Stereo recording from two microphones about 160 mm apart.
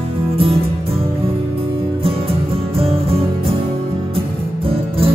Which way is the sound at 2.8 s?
35° right (ahead or behind).